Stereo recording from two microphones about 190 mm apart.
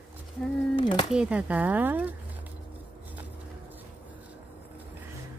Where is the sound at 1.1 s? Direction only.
5° right (ahead or behind).